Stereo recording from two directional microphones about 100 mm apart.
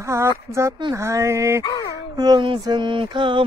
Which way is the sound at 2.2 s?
45° right (ahead or behind).